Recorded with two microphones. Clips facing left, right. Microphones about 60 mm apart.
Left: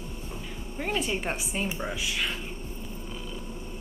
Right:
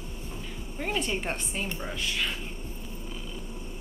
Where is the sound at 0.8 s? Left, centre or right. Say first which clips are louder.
Left 1 dB; centre.